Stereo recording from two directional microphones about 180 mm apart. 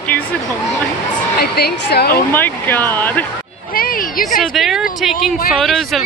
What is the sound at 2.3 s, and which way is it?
Speech, 10° left (ahead or behind).